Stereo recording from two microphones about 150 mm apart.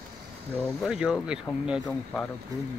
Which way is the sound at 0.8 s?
5° right (ahead or behind).